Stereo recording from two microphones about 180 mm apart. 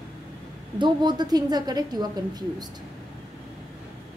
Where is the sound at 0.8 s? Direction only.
25° right (ahead or behind).